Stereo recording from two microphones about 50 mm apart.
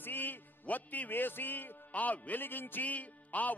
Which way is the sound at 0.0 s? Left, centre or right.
Left.